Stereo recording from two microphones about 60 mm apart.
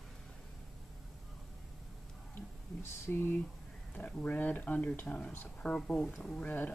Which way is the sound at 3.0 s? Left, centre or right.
Left.